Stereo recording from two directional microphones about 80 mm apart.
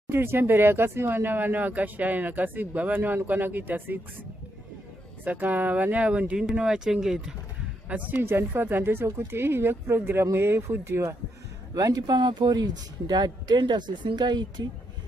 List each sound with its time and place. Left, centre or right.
0.1 s speech: right
5.2 s speech: right
7.9 s speech: right
11.7 s speech: right